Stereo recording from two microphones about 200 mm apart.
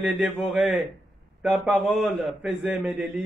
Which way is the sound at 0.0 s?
5° right (ahead or behind).